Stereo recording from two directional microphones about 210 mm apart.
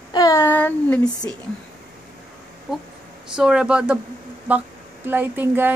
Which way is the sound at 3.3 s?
5° right (ahead or behind).